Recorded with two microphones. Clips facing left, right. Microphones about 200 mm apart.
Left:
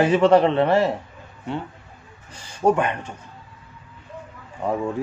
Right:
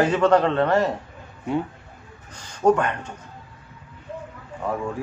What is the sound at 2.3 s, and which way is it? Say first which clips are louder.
Speech: right 1 dB; 10° left (ahead or behind).